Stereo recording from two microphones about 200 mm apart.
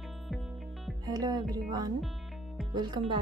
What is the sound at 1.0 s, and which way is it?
Speech, 20° right (ahead or behind).